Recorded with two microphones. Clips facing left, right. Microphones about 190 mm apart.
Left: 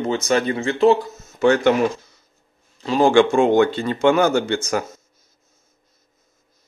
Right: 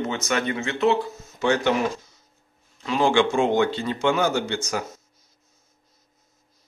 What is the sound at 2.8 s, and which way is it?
Speech, 40° left (ahead or behind).